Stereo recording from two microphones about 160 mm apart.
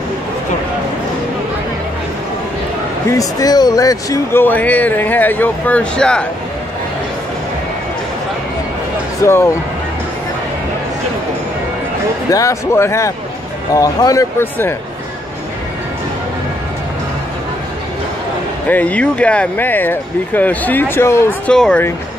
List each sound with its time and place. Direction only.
3.1 s speech: 20° left (ahead or behind); by 6.2 s 5° left (ahead or behind)
9.2 s speech: 15° left (ahead or behind)
12.3 s speech: 20° left (ahead or behind)
18.7 s speech: 10° left (ahead or behind)